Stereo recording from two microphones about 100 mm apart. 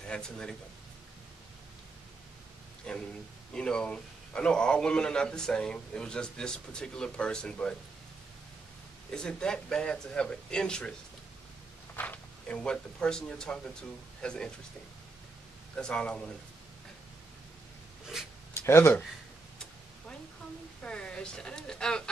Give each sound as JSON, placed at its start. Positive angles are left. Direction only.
{"t": 0.1, "sound": "a man's voice", "side_deg": 10}
{"t": 2.9, "sound": "a man's voice", "side_deg": 5}
{"t": 9.1, "sound": "a man's voice", "side_deg": 10}
{"t": 11.9, "sound": "speech", "side_deg": 20}
{"t": 15.7, "sound": "a man's voice", "side_deg": 10}
{"t": 18.5, "sound": "speech", "side_deg": 25}
{"t": 20.8, "sound": "a woman's voice", "side_deg": 10}